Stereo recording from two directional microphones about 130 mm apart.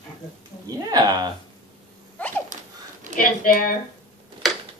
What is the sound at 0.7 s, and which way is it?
Speech, 30° right (ahead or behind).